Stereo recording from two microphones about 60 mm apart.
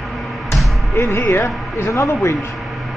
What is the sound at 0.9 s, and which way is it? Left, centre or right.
Speech, left.